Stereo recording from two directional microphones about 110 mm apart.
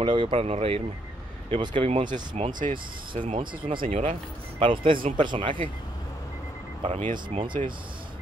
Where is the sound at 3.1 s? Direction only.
50° right (ahead or behind).